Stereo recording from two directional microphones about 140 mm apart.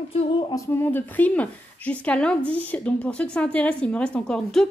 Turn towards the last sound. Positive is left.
turn(degrees=5)  # may be behind; listen again after turning